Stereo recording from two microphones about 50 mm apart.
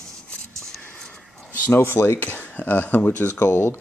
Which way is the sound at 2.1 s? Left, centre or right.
Left.